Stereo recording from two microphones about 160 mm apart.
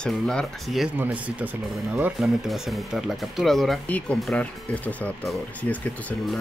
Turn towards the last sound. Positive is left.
turn(degrees=10)  # may be behind; listen again after turning